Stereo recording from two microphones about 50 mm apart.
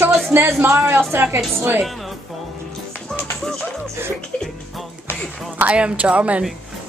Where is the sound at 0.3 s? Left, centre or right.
Right.